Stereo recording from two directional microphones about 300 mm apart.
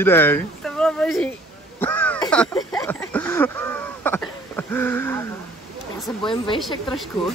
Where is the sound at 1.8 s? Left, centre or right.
Centre.